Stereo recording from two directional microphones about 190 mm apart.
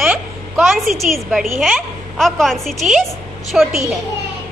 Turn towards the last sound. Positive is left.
turn(degrees=0)  # may be behind; listen again after turning